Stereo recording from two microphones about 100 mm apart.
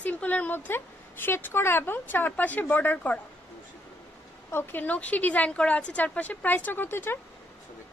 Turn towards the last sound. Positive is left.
turn(degrees=20)  # may be behind; listen again after turning